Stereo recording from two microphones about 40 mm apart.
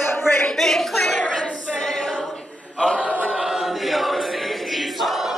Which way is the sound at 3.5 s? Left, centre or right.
Centre.